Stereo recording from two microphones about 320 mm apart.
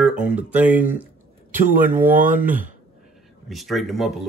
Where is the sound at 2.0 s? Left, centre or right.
Right.